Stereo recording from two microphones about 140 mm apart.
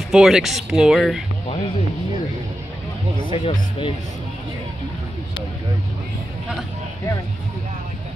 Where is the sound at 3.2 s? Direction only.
40° left (ahead or behind).